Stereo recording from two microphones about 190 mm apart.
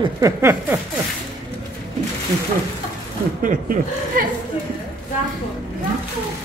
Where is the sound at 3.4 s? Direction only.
50° right (ahead or behind).